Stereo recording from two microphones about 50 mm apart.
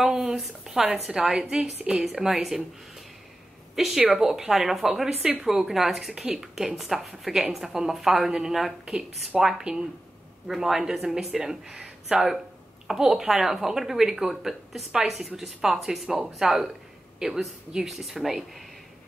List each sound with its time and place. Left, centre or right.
0.0 s a sound: centre
1.0 s a woman's voice: centre
3.7 s a woman's voice: centre
12.1 s a woman's voice: right; by 18.6 s centre